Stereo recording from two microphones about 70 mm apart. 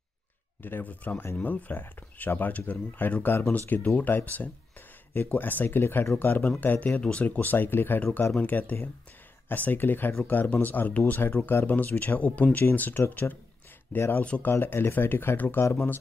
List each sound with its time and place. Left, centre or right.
0.6 s speech: left
7.0 s speech: centre; by 14.2 s left
14.2 s speech: centre
14.5 s speech: left